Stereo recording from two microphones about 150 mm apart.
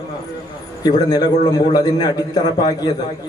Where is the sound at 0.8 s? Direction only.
25° left (ahead or behind).